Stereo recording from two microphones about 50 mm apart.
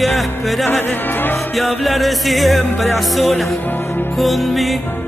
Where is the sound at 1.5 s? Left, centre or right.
Centre.